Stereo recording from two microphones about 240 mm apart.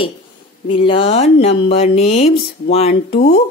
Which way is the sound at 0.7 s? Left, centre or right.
Left.